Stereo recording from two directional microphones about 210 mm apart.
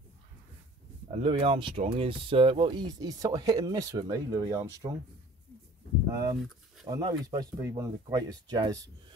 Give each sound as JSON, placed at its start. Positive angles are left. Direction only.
{"t": 1.1, "sound": "speech", "side_deg": -25}
{"t": 6.3, "sound": "a sound", "side_deg": 0}
{"t": 6.9, "sound": "speech", "side_deg": -15}